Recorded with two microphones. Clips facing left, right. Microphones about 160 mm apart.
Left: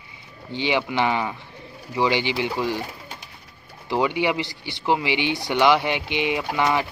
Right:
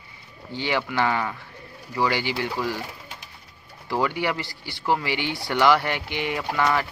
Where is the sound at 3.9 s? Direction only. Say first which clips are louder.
Left 3 dB; 20° left (ahead or behind).